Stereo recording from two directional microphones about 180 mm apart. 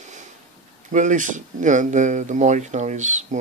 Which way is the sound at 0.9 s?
45° right (ahead or behind).